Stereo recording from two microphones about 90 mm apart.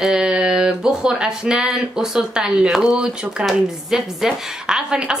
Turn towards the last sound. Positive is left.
turn(degrees=-10)  # may be behind; listen again after turning